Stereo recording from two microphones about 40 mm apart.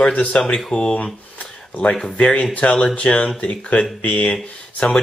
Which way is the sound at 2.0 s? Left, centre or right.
Left.